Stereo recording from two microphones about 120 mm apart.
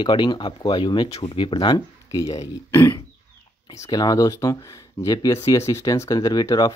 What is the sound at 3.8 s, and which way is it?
Speech, 30° left (ahead or behind).